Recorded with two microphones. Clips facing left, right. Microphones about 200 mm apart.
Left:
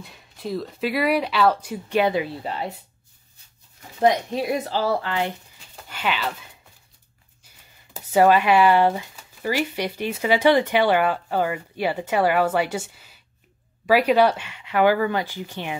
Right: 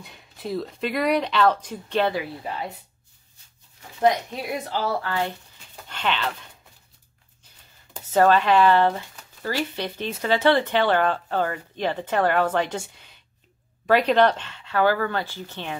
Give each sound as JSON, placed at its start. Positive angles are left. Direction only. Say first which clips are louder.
{"t": 0.0, "sound": "speech", "louder": "left 1 dB", "side_deg": 0}
{"t": 4.0, "sound": "a woman's voice", "louder": "left 2 dB", "side_deg": 25}
{"t": 5.9, "sound": "speech", "louder": "even", "side_deg": 5}
{"t": 7.9, "sound": "speech", "louder": "left 2 dB", "side_deg": 10}